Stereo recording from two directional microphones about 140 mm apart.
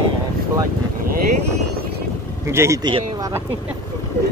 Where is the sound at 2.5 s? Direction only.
20° right (ahead or behind).